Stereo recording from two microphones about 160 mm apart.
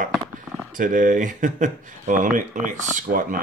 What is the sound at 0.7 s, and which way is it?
Speech, 55° right (ahead or behind).